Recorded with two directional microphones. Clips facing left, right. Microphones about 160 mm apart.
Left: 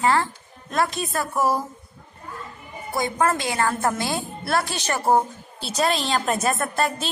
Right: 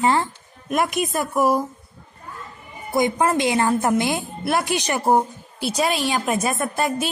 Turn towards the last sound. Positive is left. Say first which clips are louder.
# right 2 dB
turn(degrees=-10)  # may be behind; listen again after turning